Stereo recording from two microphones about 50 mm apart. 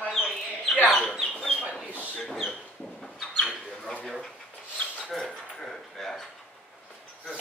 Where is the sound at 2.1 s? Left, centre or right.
Centre.